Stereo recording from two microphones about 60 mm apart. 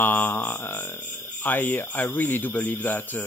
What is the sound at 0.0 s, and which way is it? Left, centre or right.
Mantra, left.